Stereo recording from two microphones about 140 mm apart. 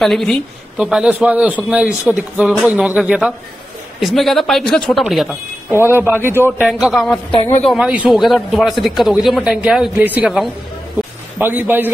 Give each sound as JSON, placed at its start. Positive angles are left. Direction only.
{"t": 0.0, "sound": "a man's voice", "side_deg": 0}
{"t": 5.7, "sound": "a man's voice", "side_deg": -15}
{"t": 6.6, "sound": "a man's voice", "side_deg": -5}
{"t": 7.9, "sound": "a man's voice", "side_deg": -10}
{"t": 11.3, "sound": "a man's voice", "side_deg": -15}